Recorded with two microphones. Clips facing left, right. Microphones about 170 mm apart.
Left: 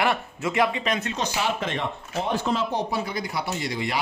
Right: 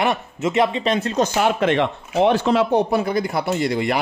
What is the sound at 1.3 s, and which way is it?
Speech, 55° right (ahead or behind).